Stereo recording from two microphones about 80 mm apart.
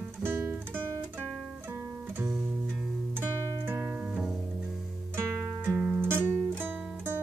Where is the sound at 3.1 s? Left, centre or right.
Right.